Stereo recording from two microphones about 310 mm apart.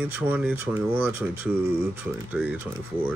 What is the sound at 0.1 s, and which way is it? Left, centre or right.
Speech, centre.